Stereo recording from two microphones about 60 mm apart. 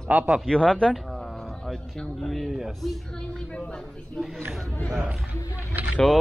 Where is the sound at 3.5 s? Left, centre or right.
Centre.